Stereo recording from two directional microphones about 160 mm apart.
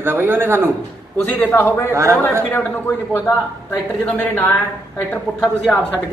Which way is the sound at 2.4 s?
15° left (ahead or behind).